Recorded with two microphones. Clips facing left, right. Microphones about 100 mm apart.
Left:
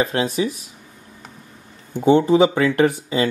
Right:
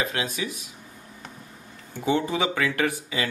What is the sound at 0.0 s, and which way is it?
Speech, 35° left (ahead or behind).